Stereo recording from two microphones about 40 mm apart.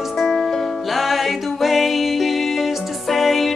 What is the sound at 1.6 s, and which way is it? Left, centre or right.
Music, centre.